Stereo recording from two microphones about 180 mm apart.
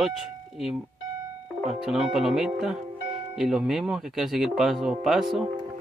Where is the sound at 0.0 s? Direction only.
Centre (ahead or behind).